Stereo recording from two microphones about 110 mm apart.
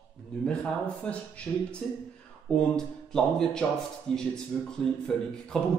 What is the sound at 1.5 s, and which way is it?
Speech, 15° left (ahead or behind).